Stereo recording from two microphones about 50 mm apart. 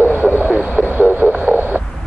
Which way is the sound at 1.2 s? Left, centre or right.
Right.